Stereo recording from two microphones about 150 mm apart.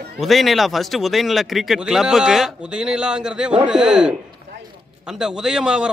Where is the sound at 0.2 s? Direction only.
Centre (ahead or behind).